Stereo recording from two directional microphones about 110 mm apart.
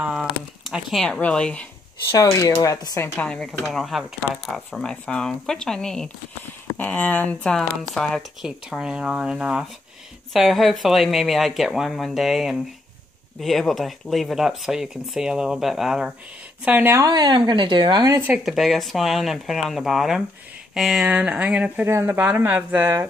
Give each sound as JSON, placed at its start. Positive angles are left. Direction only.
{"t": 0.0, "sound": "a sound", "side_deg": -5}
{"t": 1.0, "sound": "speech", "side_deg": 5}
{"t": 2.1, "sound": "speech", "side_deg": 30}
{"t": 3.2, "sound": "speech", "side_deg": 10}
{"t": 16.9, "sound": "a woman's voice", "side_deg": -40}
{"t": 18.4, "sound": "speech", "side_deg": 0}
{"t": 21.8, "sound": "speech", "side_deg": -25}